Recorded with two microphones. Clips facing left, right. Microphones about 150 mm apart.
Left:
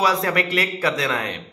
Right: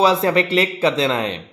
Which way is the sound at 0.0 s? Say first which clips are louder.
Right 5 dB; 25° right (ahead or behind).